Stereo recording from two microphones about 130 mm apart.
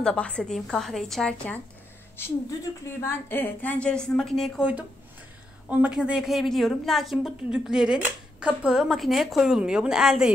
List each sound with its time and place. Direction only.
0.0 s a woman's voice: 10° left (ahead or behind)
2.1 s a woman's voice: 20° left (ahead or behind); by 4.6 s centre (ahead or behind)
5.7 s a woman's voice: 10° right (ahead or behind)